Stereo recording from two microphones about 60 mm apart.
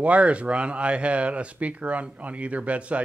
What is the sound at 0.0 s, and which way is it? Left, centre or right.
A man's voice, right.